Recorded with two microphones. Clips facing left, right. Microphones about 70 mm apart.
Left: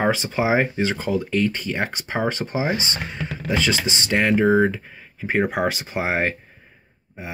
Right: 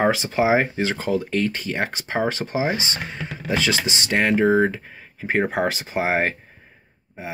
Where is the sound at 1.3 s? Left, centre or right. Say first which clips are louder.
Left 1 dB; right.